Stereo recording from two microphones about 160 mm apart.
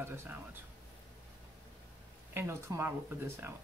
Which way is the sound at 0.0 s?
15° right (ahead or behind).